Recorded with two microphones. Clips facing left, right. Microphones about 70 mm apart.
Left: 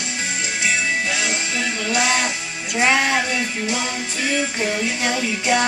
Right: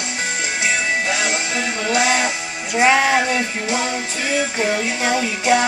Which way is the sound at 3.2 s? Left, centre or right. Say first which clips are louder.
Right 3 dB; right.